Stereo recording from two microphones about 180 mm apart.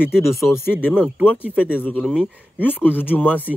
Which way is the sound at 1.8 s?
10° left (ahead or behind).